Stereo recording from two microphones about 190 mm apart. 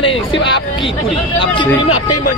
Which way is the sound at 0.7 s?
25° left (ahead or behind).